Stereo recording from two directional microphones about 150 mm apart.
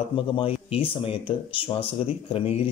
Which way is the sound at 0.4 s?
40° left (ahead or behind).